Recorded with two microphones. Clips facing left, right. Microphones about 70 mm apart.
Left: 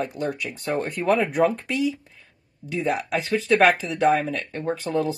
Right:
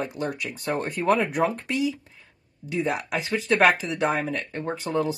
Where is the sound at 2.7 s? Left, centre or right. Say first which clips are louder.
Left 2 dB; right.